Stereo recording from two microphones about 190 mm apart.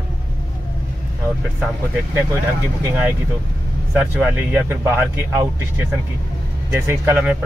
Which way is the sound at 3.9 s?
10° right (ahead or behind).